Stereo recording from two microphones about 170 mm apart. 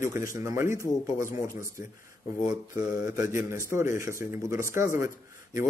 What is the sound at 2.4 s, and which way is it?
Speech, 15° right (ahead or behind).